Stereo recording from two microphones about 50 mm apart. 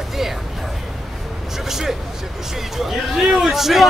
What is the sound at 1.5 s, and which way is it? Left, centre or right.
A man's voice, centre.